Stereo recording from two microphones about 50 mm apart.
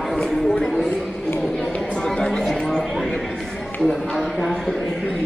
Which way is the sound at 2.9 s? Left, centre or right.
Centre.